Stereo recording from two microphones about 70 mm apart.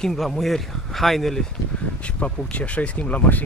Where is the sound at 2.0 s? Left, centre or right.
Centre.